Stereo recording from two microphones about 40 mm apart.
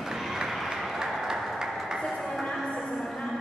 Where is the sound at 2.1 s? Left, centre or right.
Centre.